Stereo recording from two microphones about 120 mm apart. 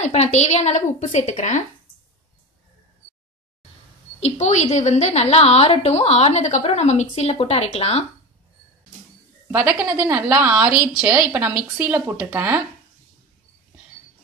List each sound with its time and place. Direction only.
0.0 s a woman's voice: 75° left (ahead or behind)
4.2 s a woman's voice: 70° left (ahead or behind)
9.5 s speech: 10° right (ahead or behind)